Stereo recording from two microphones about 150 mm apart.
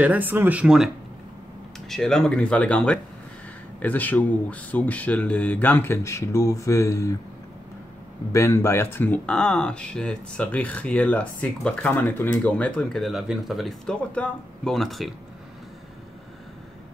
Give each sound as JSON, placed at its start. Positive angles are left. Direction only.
{"t": 0.0, "sound": "speech", "side_deg": -10}
{"t": 1.9, "sound": "speech", "side_deg": 5}
{"t": 8.3, "sound": "speech", "side_deg": 20}